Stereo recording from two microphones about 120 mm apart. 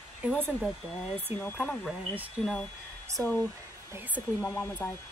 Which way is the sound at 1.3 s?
15° right (ahead or behind).